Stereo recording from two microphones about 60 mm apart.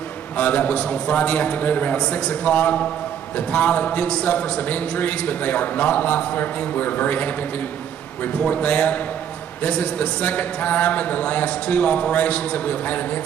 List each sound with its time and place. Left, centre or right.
0.4 s a man's voice: left